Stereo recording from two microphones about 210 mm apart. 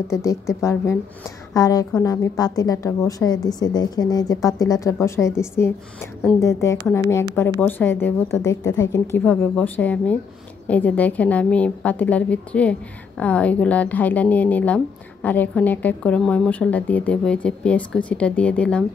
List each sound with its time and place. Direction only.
0.1 s a woman's voice: 15° left (ahead or behind)